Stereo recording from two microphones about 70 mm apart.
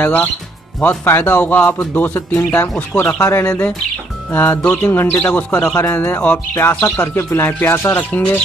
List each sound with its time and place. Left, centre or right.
0.0 s speech: left
3.2 s speech: left